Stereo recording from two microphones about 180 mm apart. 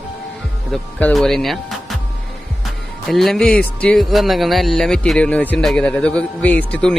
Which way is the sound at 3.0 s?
Centre (ahead or behind).